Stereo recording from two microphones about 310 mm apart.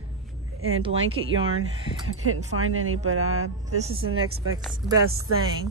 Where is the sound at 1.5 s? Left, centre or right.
Right.